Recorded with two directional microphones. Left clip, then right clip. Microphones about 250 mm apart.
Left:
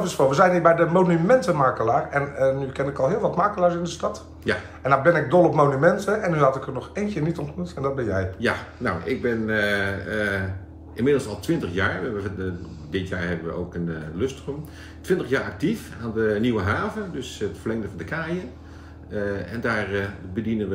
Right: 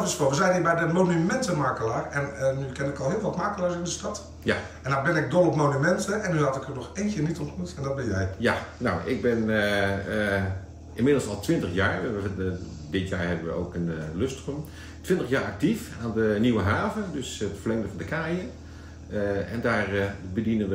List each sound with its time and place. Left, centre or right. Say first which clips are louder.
0.0 s a man's voice: left 5 dB; centre
4.5 s speech: left 2 dB; centre
4.8 s a man's voice: left 7 dB; centre
8.4 s speech: left 1 dB; centre